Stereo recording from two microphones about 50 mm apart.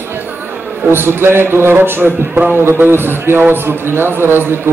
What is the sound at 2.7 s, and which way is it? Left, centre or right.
A man's voice, right.